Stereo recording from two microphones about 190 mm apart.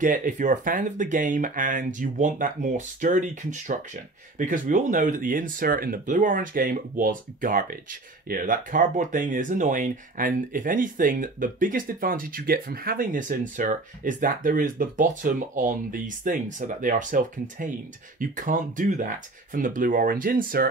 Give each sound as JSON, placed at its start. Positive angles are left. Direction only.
{"t": 0.0, "sound": "speech", "side_deg": -45}